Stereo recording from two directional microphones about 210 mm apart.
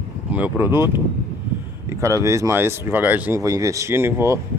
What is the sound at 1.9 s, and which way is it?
Speech, 15° right (ahead or behind).